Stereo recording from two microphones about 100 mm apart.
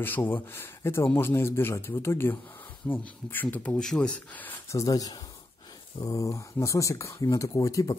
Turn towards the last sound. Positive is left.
turn(degrees=35)  # may be behind; listen again after turning